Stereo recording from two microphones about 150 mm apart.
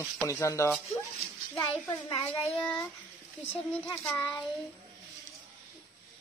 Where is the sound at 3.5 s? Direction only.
20° left (ahead or behind).